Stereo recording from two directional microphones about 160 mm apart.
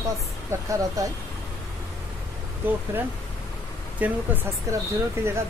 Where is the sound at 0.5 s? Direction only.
15° right (ahead or behind).